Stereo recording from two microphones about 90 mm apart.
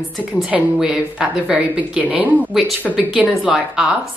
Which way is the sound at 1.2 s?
15° right (ahead or behind).